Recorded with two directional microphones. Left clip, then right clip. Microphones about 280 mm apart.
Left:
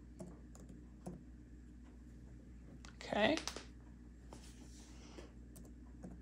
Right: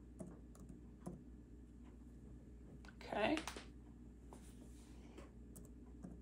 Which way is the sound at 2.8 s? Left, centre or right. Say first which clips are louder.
Left 5 dB; left.